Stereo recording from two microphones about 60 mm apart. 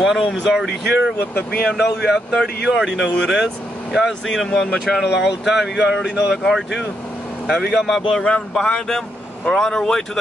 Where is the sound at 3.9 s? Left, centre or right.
Centre.